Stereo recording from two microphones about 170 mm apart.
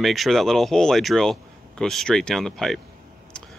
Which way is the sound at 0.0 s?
Centre (ahead or behind).